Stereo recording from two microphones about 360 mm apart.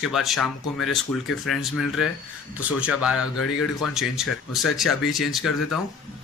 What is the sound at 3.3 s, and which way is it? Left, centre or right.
Speech, left.